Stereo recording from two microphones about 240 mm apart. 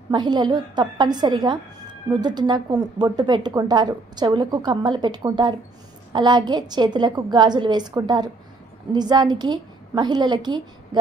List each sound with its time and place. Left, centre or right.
0.1 s a woman's voice: centre